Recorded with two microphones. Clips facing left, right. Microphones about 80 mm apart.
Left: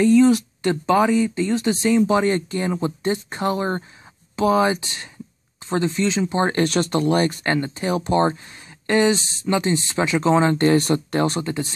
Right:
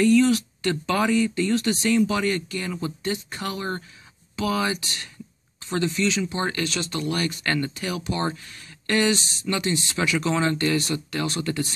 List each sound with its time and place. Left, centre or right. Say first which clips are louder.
0.0 s speech: left 4 dB; left
6.6 s speech: left 8 dB; left
10.8 s speech: left 7 dB; left
11.4 s speech: left 1 dB; left